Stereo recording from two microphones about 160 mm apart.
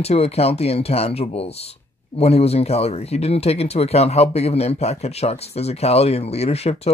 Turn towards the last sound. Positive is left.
turn(degrees=40)  # may be behind; listen again after turning